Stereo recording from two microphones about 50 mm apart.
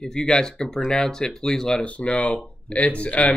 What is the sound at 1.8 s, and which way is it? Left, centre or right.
Speech, left.